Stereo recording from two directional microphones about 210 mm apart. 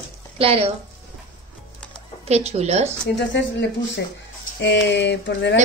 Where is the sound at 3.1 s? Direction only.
55° left (ahead or behind).